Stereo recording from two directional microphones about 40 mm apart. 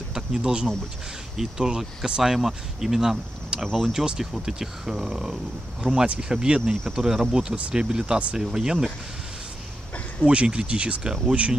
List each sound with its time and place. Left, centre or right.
0.1 s speech: centre
2.3 s speech: centre
3.5 s a sound: right
3.9 s speech: centre
6.9 s speech: centre
10.2 s speech: right